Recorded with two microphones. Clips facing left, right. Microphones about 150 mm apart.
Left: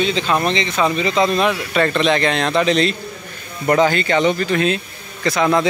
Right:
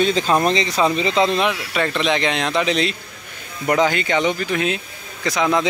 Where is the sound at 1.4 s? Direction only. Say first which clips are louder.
Left 3 dB; 10° right (ahead or behind).